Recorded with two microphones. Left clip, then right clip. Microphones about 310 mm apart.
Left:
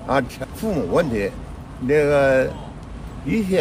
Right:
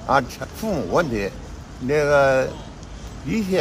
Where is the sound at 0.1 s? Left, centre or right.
Centre.